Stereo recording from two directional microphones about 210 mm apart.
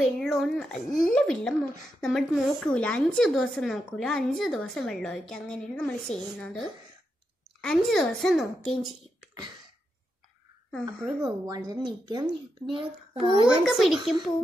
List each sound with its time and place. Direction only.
0.0 s a woman's voice: centre (ahead or behind)
0.8 s speech: 40° left (ahead or behind)
1.1 s a woman's voice: 5° left (ahead or behind)
7.6 s a woman's voice: centre (ahead or behind)
10.7 s a woman's voice: centre (ahead or behind)
11.2 s speech: 20° right (ahead or behind)
13.7 s a woman's voice: centre (ahead or behind)